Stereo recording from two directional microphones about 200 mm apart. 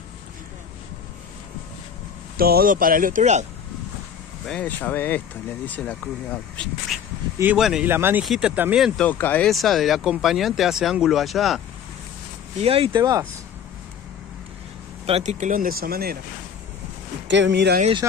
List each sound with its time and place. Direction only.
2.3 s speech: 50° right (ahead or behind)
4.5 s speech: 10° left (ahead or behind)
12.6 s speech: 30° right (ahead or behind)
15.0 s speech: 35° right (ahead or behind); by 16.2 s 50° right (ahead or behind)
17.3 s speech: 60° right (ahead or behind)